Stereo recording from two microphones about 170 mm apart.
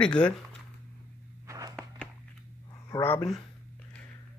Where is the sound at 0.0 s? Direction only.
5° left (ahead or behind).